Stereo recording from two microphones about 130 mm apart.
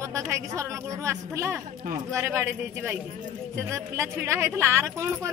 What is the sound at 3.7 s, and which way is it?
A woman's voice, 20° right (ahead or behind).